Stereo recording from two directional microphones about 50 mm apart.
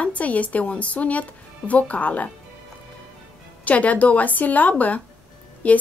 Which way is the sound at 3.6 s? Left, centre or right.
Left.